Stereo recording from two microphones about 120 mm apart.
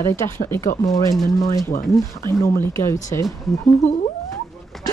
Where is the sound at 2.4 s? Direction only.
20° left (ahead or behind).